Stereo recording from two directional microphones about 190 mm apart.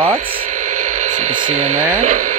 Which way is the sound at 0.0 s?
30° right (ahead or behind).